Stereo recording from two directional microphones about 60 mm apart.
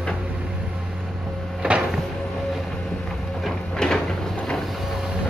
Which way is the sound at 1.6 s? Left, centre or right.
Centre.